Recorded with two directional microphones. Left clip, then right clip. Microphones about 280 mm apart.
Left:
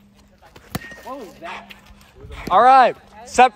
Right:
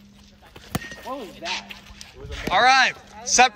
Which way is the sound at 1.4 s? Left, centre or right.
Left.